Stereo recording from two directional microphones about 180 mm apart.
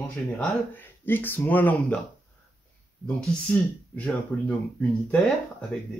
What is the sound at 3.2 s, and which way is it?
Speech, 10° left (ahead or behind).